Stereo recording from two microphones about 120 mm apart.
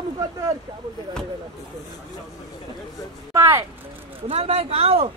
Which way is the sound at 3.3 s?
20° right (ahead or behind).